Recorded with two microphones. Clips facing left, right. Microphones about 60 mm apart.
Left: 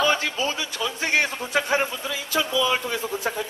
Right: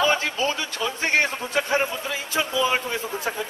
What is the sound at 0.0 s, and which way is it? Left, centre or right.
A man's voice, right.